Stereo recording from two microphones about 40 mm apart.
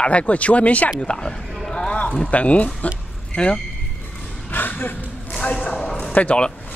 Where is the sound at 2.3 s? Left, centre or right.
Left.